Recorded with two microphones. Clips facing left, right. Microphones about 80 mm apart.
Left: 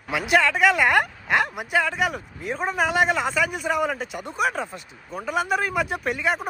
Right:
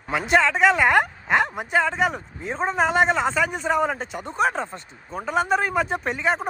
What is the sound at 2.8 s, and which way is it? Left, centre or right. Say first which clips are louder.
Speech: right 2 dB; centre.